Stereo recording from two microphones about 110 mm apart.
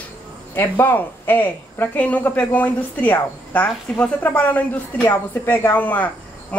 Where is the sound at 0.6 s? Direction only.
20° left (ahead or behind).